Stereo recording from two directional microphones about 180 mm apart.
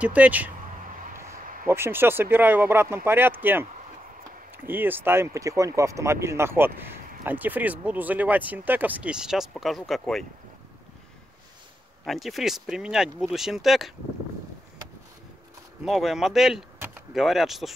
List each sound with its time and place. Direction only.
0.0 s speech: 5° right (ahead or behind)
1.3 s a sound: 50° right (ahead or behind)
1.7 s speech: 15° right (ahead or behind)
4.6 s speech: 10° right (ahead or behind)
12.0 s speech: centre (ahead or behind)
15.8 s speech: centre (ahead or behind)